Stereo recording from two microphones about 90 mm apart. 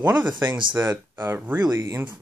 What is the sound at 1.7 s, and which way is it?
Speech, 30° right (ahead or behind).